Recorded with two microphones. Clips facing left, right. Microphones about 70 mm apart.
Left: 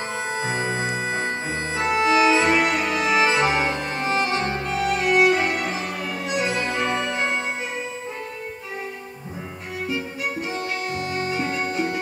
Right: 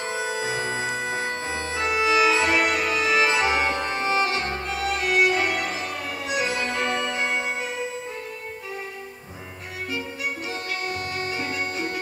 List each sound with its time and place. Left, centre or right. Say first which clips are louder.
0.8 s music: left 2 dB; centre
1.5 s organ: left 2 dB; centre
1.9 s music: left 2 dB; left
2.2 s music: left 2 dB; centre
10.9 s music: left 3 dB; centre